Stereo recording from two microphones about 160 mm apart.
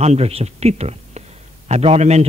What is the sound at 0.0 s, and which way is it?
A man's voice, 40° right (ahead or behind).